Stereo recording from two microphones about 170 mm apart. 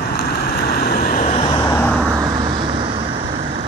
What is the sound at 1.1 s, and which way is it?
Vehicle, 40° left (ahead or behind).